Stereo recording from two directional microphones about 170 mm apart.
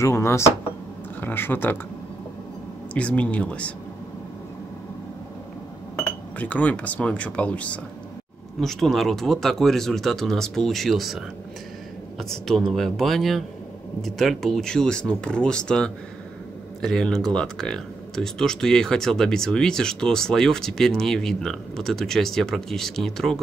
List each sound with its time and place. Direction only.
0.0 s speech: 15° left (ahead or behind)
2.9 s speech: 10° left (ahead or behind)
6.0 s speech: 10° left (ahead or behind)